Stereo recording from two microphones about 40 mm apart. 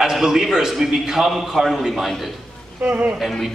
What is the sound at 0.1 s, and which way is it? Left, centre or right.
A man's voice, centre.